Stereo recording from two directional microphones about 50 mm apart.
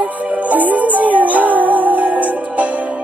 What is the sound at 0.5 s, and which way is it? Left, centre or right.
Music, right.